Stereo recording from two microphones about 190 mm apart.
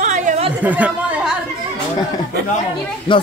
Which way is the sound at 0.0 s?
40° right (ahead or behind).